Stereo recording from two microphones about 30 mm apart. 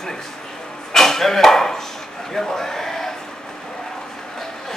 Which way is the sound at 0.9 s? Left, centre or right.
Centre.